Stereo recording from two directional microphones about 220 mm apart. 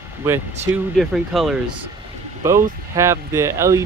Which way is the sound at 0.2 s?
10° right (ahead or behind).